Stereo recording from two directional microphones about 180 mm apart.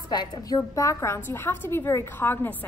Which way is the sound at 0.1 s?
25° left (ahead or behind).